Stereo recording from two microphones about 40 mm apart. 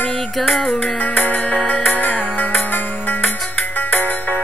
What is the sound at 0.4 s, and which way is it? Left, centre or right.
Music, centre.